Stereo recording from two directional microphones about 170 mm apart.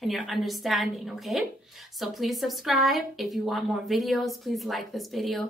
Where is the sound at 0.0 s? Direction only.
Centre (ahead or behind).